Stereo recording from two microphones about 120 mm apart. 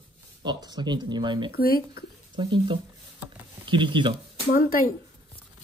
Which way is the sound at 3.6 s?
45° right (ahead or behind).